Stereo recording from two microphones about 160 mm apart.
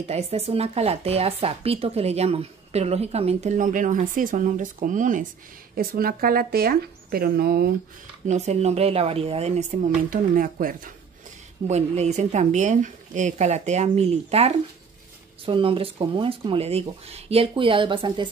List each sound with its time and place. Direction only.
0.1 s speech: 40° right (ahead or behind)
5.8 s speech: 65° right (ahead or behind)
8.3 s speech: 45° right (ahead or behind)
11.6 s speech: 45° right (ahead or behind)